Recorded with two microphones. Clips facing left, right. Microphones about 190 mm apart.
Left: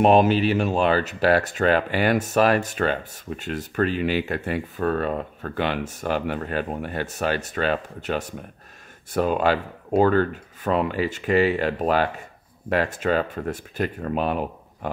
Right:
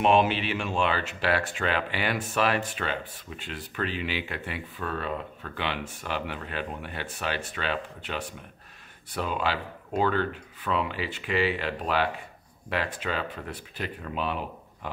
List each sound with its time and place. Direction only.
0.0 s speech: 40° left (ahead or behind)